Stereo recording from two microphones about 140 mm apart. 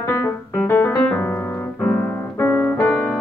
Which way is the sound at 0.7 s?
15° left (ahead or behind).